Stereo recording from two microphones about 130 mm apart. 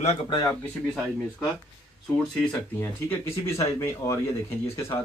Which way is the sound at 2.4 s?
15° left (ahead or behind).